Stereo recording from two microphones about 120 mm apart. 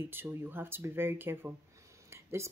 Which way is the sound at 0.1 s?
20° right (ahead or behind).